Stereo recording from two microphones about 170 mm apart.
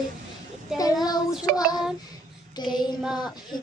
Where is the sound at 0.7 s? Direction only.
5° right (ahead or behind).